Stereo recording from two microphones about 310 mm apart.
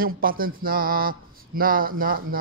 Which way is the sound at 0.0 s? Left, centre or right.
Right.